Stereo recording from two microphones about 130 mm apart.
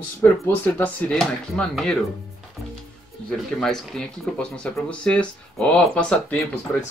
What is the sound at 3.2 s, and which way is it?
Speech, 5° left (ahead or behind).